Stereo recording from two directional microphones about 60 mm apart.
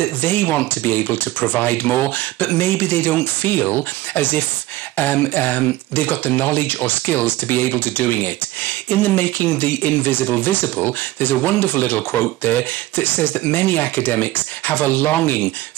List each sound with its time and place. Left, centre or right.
0.2 s speech: left